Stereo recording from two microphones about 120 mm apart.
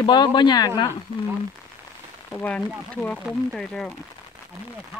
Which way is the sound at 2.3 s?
15° left (ahead or behind).